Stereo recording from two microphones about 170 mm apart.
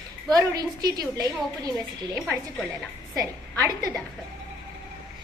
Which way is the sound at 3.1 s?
20° right (ahead or behind).